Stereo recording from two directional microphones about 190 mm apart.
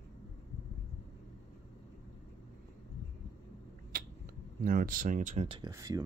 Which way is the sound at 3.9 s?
50° right (ahead or behind).